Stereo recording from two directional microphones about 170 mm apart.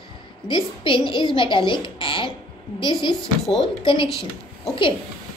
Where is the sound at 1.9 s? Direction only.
30° left (ahead or behind).